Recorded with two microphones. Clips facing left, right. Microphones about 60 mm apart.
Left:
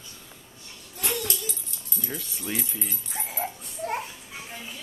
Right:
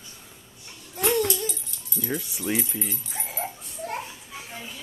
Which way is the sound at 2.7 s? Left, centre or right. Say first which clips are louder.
Right 3 dB; centre.